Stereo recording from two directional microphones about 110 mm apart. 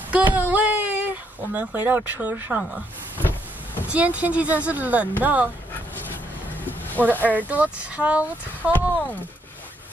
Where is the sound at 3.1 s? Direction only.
20° left (ahead or behind).